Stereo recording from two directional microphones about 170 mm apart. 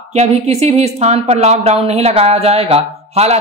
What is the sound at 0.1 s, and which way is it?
Speech, 40° right (ahead or behind).